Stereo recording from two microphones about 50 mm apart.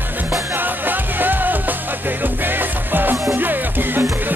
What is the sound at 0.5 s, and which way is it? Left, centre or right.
Music, right.